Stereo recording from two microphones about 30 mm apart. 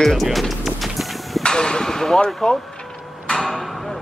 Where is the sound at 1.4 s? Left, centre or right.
Left.